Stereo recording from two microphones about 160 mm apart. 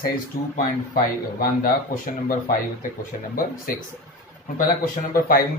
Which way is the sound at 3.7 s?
60° left (ahead or behind).